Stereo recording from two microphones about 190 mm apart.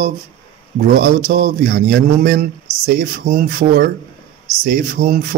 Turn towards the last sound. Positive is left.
turn(degrees=-50)  # may be behind; listen again after turning